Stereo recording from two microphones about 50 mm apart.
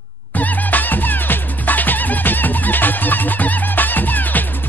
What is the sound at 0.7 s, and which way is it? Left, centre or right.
Music, left.